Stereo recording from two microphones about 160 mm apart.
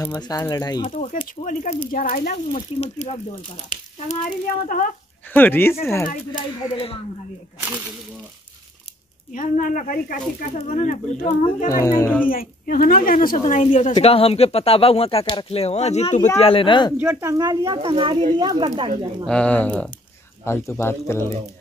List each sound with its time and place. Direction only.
0.2 s speech: 25° left (ahead or behind)
0.9 s speech: 50° left (ahead or behind)
2.3 s speech: 40° left (ahead or behind)
4.6 s a woman's voice: 55° left (ahead or behind)
5.3 s speech: 15° left (ahead or behind)
6.0 s speech: 30° left (ahead or behind)
9.3 s a woman's voice: 55° left (ahead or behind)
10.7 s speech: 45° left (ahead or behind)
11.7 s speech: 20° left (ahead or behind)
12.3 s a woman's voice: 65° left (ahead or behind); by 16.9 s 30° left (ahead or behind)
16.9 s speech: 15° right (ahead or behind)
19.2 s speech: 5° left (ahead or behind)